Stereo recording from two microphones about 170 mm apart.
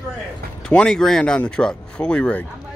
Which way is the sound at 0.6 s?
5° left (ahead or behind).